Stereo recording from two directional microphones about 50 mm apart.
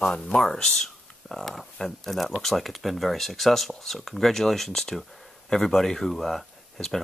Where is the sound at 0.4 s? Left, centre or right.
Centre.